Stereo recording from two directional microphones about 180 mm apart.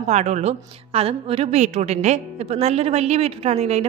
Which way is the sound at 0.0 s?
40° right (ahead or behind).